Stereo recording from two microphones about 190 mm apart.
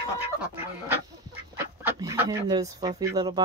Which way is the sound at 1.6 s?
10° right (ahead or behind).